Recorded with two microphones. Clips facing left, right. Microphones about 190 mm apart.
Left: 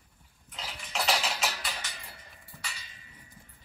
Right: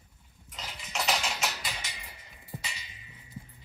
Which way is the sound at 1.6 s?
10° right (ahead or behind).